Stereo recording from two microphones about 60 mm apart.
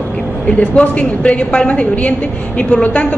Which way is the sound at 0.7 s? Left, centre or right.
Left.